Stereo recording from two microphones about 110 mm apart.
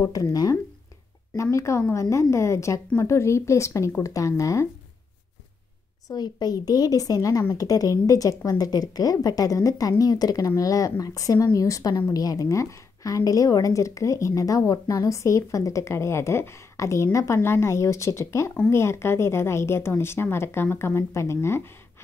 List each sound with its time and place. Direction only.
0.0 s a woman's voice: 30° left (ahead or behind)
6.0 s a woman's voice: 35° left (ahead or behind)